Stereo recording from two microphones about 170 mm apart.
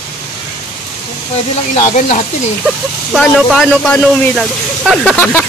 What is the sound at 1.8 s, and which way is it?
Speech, 45° left (ahead or behind).